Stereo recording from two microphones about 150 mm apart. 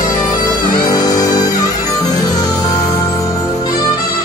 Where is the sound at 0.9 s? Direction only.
25° left (ahead or behind).